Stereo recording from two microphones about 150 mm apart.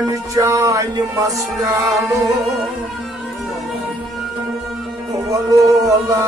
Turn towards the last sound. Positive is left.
turn(degrees=-25)  # may be behind; listen again after turning